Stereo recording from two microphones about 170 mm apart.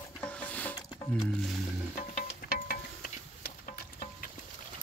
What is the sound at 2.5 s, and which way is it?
Music, 60° left (ahead or behind).